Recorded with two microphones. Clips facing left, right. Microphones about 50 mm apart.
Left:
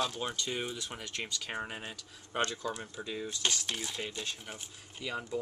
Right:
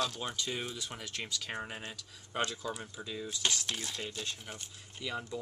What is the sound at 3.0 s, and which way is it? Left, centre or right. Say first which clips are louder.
Speech: left 3 dB; centre.